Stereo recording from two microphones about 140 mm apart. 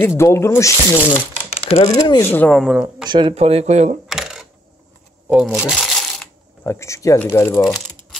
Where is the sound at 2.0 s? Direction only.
25° left (ahead or behind).